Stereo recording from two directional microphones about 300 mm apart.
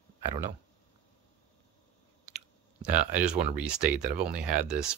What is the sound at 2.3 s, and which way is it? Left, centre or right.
Chewing, centre.